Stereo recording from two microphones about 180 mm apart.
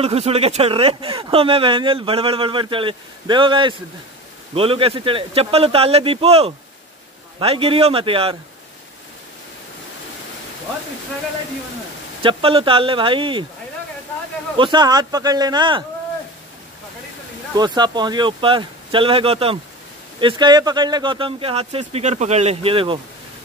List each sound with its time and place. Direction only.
0.0 s speech: 35° right (ahead or behind)
12.2 s speech: 30° right (ahead or behind)
14.6 s speech: 25° right (ahead or behind)
17.6 s speech: 25° right (ahead or behind)